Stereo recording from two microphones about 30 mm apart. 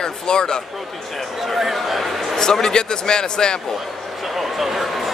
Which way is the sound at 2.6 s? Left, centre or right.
Left.